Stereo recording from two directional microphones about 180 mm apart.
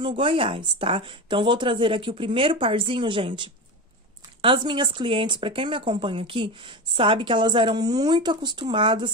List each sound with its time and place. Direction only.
0.0 s speech: 30° right (ahead or behind)